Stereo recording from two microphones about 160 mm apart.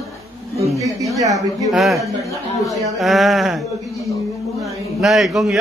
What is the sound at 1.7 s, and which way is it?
Speech, centre (ahead or behind).